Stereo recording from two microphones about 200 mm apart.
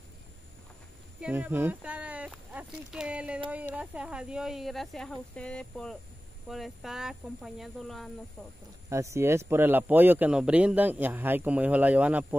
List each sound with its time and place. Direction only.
1.2 s speech: 10° right (ahead or behind)
8.8 s speech: 15° right (ahead or behind)